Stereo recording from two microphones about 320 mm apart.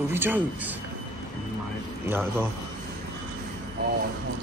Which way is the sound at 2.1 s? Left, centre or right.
Centre.